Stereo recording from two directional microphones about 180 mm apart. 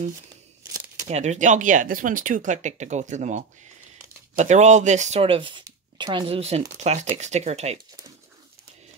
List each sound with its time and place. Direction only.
1.0 s speech: 40° right (ahead or behind)